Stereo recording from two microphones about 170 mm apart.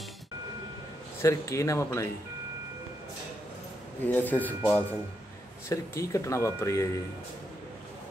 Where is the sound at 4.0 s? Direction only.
10° left (ahead or behind).